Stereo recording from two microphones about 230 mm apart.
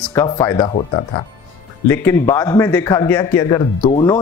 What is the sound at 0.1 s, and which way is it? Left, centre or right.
Speech, centre.